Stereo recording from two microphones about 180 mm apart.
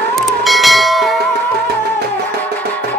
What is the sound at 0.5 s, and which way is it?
Bell, centre (ahead or behind).